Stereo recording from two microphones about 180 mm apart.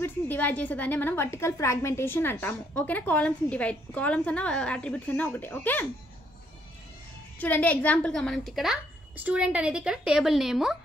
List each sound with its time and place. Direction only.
0.0 s a woman's voice: 10° left (ahead or behind)
7.3 s a woman's voice: 10° left (ahead or behind)